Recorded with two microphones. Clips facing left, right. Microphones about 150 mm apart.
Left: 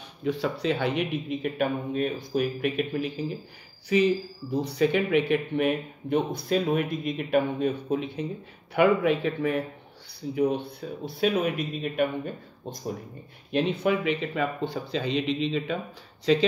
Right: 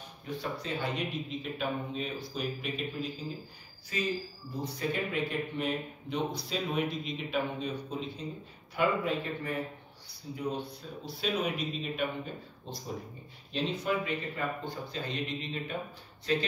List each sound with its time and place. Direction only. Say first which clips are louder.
0.2 s speech: left 10 dB; 85° left; by 3.3 s 65° left (ahead or behind)
3.9 s speech: left 11 dB; 75° left (ahead or behind)
10.3 s speech: left 9 dB; 65° left (ahead or behind)
13.5 s speech: left 7 dB; 60° left (ahead or behind); by 16.4 s 90° left